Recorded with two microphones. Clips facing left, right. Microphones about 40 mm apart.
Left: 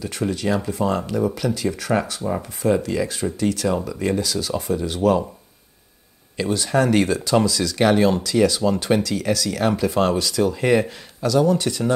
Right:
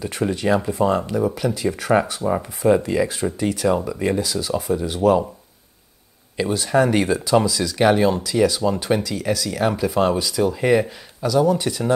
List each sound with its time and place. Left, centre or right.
0.0 s speech: centre
6.3 s speech: centre